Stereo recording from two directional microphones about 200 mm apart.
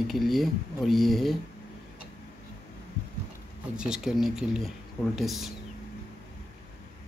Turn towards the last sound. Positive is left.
turn(degrees=0)  # may be behind; listen again after turning